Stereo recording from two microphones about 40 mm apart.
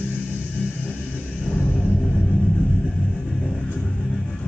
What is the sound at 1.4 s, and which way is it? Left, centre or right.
Music, left.